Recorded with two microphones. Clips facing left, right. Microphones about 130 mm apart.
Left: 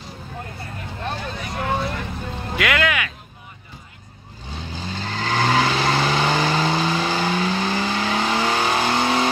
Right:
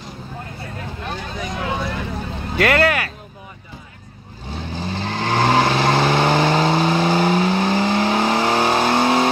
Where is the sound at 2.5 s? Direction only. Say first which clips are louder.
Right 5 dB; 40° right (ahead or behind).